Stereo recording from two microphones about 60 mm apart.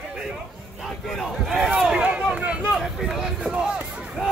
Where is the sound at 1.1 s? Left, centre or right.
Centre.